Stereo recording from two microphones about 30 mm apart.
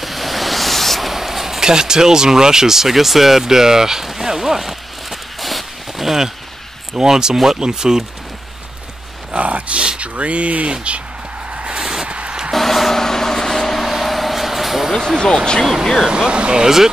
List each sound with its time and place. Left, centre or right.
0.0 s waves: centre
1.1 s a sound: centre
1.6 s speech: right
7.0 s speech: right
9.3 s a sound: right
10.7 s speech: right
11.5 s vehicle: right
11.8 s a sound: right
12.1 s a sound: right
12.5 s vehicle: centre
15.6 s speech: centre
16.1 s speech: right
16.6 s speech: centre